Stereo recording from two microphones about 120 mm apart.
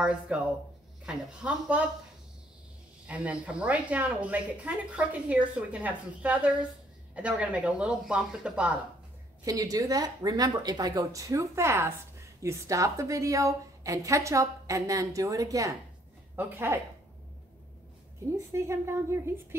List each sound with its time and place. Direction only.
0.3 s speech: 10° right (ahead or behind)
3.1 s speech: 10° right (ahead or behind)
9.4 s a woman's voice: 30° right (ahead or behind)
16.3 s a woman's voice: 15° right (ahead or behind)
18.5 s a woman's voice: 20° right (ahead or behind)